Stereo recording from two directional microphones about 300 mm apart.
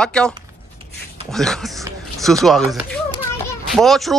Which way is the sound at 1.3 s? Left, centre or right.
Centre.